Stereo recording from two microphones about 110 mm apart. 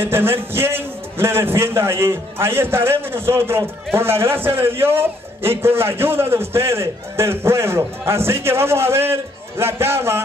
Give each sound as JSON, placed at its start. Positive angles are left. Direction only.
{"t": 0.0, "sound": "a man's voice", "side_deg": -20}